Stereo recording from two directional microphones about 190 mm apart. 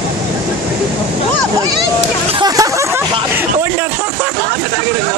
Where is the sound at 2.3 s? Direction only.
20° right (ahead or behind).